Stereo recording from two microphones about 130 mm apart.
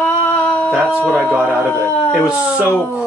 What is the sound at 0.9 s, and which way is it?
Speech, 15° right (ahead or behind).